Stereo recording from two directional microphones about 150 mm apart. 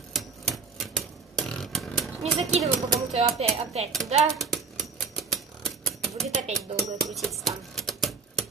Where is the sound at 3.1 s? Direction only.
45° right (ahead or behind).